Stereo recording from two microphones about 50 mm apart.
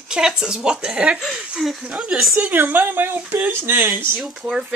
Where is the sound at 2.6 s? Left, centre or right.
Right.